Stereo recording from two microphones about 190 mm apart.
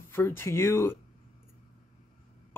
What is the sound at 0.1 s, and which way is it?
Speech, 15° left (ahead or behind).